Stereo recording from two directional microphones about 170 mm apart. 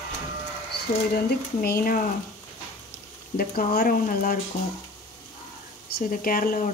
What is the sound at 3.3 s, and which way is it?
Speech, 60° left (ahead or behind).